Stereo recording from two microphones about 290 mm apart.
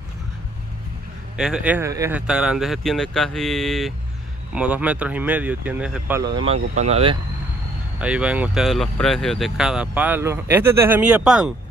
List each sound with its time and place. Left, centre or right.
1.3 s speech: centre
8.0 s speech: centre